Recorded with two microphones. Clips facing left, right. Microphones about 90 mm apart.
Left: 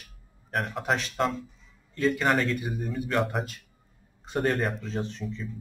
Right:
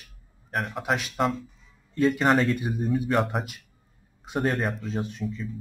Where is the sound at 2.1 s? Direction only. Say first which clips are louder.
Right 3 dB; 15° right (ahead or behind).